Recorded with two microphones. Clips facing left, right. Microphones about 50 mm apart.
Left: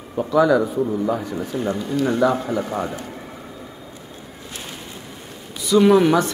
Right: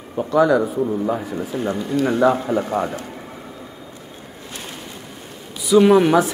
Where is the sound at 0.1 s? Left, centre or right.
Centre.